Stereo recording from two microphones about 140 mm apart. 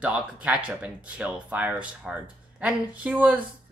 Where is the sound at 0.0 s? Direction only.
10° right (ahead or behind).